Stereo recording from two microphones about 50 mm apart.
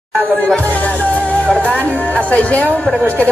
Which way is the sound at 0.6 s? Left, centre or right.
Left.